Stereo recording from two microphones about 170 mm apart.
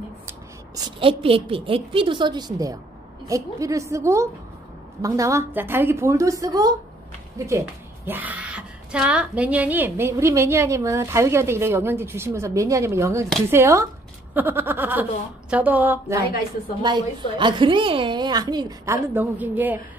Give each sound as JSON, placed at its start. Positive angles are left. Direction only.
{"t": 0.7, "sound": "a woman's voice", "side_deg": -30}
{"t": 16.8, "sound": "a woman's voice", "side_deg": -25}